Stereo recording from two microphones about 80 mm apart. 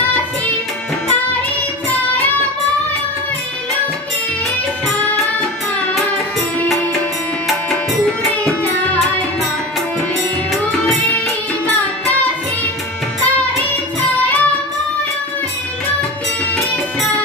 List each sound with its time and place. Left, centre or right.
7.7 s music: centre
14.1 s music: centre